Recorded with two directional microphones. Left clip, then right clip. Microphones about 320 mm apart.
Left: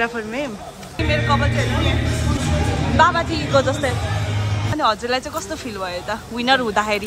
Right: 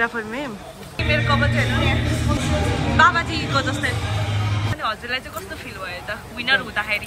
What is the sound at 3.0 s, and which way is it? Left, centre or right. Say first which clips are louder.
Speech: even; centre.